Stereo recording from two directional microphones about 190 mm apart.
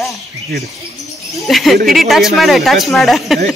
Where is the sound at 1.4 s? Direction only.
Centre (ahead or behind).